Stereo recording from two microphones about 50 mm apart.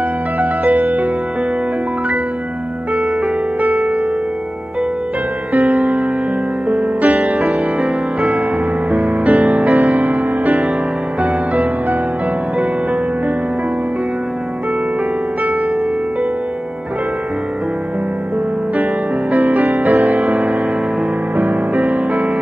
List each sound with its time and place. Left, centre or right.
0.4 s music: right
3.6 s music: right
5.7 s music: right
7.4 s music: centre
9.2 s music: right
19.3 s music: right
20.2 s music: centre
21.4 s music: right
21.8 s music: centre